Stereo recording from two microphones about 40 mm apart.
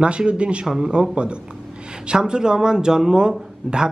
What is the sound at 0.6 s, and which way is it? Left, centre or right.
Speech, centre.